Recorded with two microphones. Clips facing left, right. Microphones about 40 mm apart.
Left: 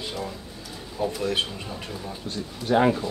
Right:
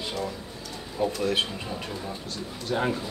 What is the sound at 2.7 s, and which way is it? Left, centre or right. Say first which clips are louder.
Speech: left 7 dB; left.